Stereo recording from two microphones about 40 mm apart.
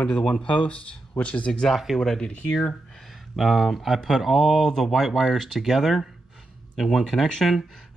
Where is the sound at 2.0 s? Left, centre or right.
Centre.